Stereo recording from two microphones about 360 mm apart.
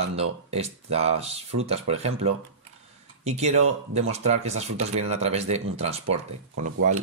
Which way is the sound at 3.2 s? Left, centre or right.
Centre.